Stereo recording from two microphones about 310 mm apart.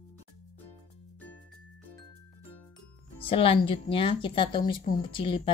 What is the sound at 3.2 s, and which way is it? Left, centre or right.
Speech, centre.